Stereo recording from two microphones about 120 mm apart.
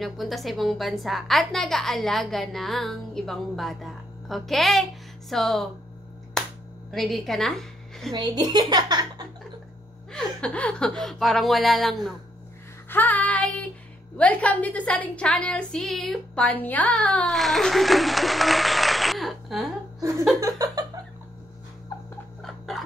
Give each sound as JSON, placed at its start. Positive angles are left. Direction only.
{"t": 0.0, "sound": "a woman's voice", "side_deg": 0}
{"t": 6.9, "sound": "a woman's voice", "side_deg": 0}
{"t": 8.1, "sound": "a woman's voice", "side_deg": -35}
{"t": 10.1, "sound": "a woman's voice", "side_deg": 10}
{"t": 12.9, "sound": "child singing", "side_deg": 15}
{"t": 14.1, "sound": "a woman's voice", "side_deg": 10}
{"t": 20.3, "sound": "a sound", "side_deg": -30}
{"t": 22.4, "sound": "a sound", "side_deg": 0}